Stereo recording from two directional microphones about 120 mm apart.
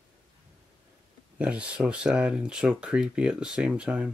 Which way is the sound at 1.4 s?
10° right (ahead or behind).